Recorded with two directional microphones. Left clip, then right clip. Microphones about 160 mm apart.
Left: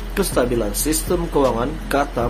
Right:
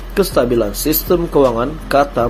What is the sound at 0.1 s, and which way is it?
Speech, 20° right (ahead or behind).